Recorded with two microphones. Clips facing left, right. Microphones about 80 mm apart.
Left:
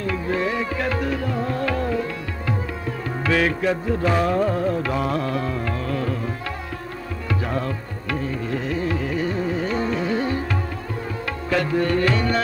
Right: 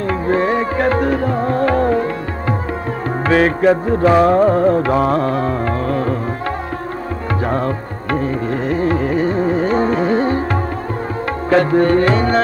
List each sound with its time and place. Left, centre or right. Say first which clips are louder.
0.0 s music: right 7 dB; right
3.3 s music: right 8 dB; right
7.4 s music: right 10 dB; right
11.5 s tabla: right 8 dB; right